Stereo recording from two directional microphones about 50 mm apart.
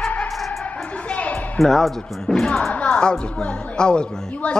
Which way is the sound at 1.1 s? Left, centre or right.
Left.